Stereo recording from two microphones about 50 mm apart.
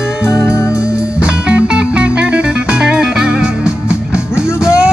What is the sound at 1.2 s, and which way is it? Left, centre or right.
Music, right.